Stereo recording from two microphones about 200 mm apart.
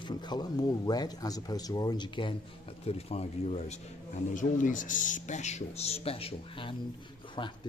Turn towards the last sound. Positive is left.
turn(degrees=25)  # may be behind; listen again after turning